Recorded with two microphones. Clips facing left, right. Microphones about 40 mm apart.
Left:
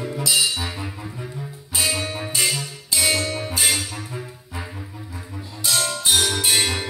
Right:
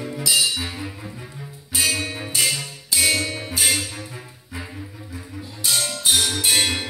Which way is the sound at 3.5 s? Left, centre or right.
Left.